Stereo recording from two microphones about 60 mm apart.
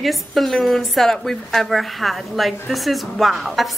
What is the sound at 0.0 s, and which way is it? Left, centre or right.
A woman's voice, centre.